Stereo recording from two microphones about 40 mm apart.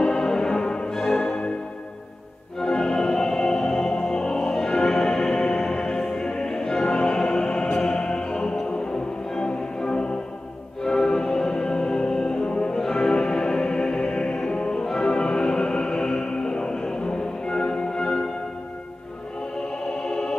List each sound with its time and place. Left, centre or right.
0.0 s music: left
1.1 s music: left
2.6 s music: centre
20.0 s music: centre